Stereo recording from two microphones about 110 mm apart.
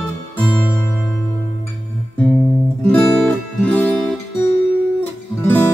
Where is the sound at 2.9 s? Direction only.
10° left (ahead or behind).